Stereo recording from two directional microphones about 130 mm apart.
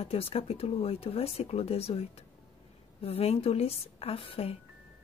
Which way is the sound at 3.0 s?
50° left (ahead or behind).